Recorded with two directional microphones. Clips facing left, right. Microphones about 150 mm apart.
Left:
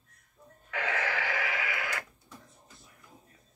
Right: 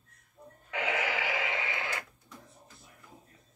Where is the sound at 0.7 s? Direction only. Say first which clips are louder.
Right 1 dB; 20° right (ahead or behind).